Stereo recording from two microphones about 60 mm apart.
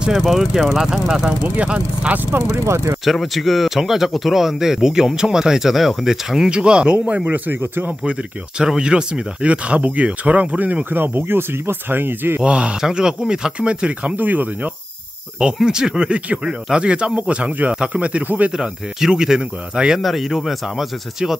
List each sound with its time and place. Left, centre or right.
0.0 s speech: centre
1.4 s speech: right
2.6 s speech: right
3.1 s speech: centre; by 7.9 s right
8.0 s speech: centre; by 12.4 s right
12.4 s speech: centre
15.3 s speech: centre
18.6 s speech: centre